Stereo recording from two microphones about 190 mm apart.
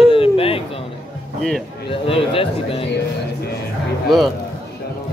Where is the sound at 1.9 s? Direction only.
30° left (ahead or behind).